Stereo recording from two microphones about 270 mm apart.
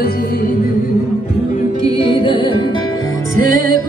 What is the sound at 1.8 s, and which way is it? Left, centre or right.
Music, centre.